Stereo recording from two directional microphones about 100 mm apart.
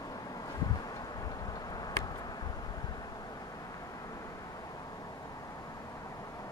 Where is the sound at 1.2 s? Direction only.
40° left (ahead or behind).